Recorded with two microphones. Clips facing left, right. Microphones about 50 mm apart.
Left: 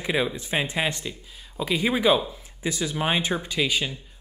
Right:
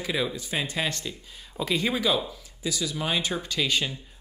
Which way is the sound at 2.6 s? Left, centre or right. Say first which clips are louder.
Left 3 dB; left.